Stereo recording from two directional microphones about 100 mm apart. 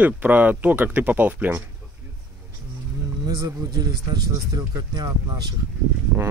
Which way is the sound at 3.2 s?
40° right (ahead or behind).